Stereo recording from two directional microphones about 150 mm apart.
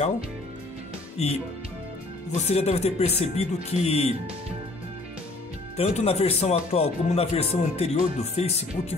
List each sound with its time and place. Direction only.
1.1 s speech: 45° left (ahead or behind)
5.8 s speech: 45° left (ahead or behind)